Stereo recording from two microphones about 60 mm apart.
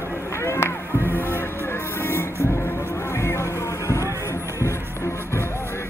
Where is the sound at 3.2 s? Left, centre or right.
Left.